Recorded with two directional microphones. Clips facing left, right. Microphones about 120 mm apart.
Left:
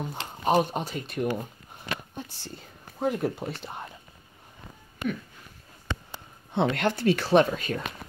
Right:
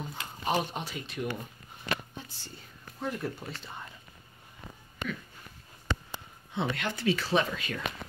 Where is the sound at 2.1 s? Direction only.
70° left (ahead or behind).